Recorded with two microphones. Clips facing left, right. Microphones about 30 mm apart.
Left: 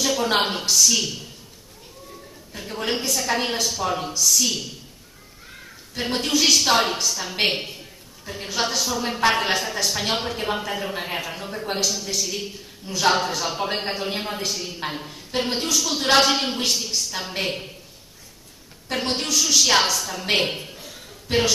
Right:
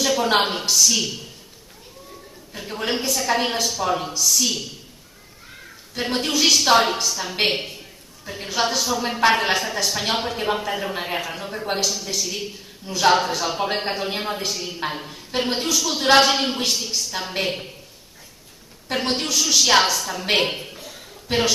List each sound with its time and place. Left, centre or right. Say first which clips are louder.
0.0 s a woman's voice: right 2 dB; centre
18.9 s a woman's voice: right 1 dB; centre